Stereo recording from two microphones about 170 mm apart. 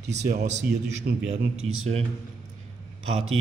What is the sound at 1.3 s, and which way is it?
Speech, 40° right (ahead or behind).